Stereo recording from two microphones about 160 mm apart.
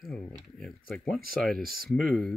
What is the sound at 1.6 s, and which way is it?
Speech, 70° right (ahead or behind).